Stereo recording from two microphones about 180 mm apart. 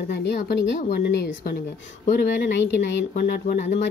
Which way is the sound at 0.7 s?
45° left (ahead or behind).